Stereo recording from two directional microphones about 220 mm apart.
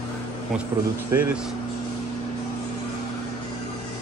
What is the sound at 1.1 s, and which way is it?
Speech, 10° right (ahead or behind).